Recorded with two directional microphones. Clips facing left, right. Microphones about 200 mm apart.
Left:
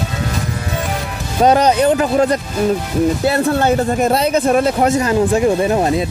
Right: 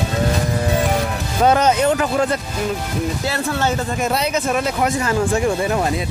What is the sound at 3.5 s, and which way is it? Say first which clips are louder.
Speech: left 6 dB; 55° left (ahead or behind).